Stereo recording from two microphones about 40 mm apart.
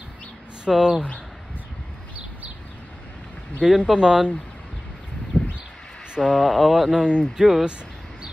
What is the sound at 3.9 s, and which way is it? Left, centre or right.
Speech, centre.